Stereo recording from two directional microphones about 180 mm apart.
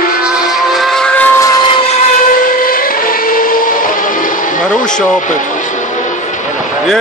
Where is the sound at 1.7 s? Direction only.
35° left (ahead or behind).